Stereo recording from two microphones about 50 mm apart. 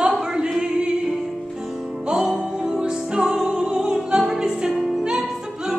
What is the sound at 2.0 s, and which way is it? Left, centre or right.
Music, centre.